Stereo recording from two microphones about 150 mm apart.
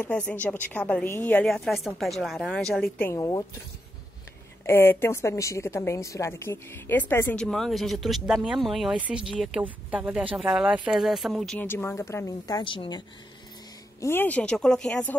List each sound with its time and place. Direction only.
0.0 s a woman's voice: 10° left (ahead or behind)
3.1 s a woman's voice: 25° left (ahead or behind)
4.6 s a woman's voice: 15° left (ahead or behind); by 11.5 s centre (ahead or behind)
11.5 s a woman's voice: 15° left (ahead or behind); by 13.0 s 35° left (ahead or behind)
14.0 s a woman's voice: 15° left (ahead or behind)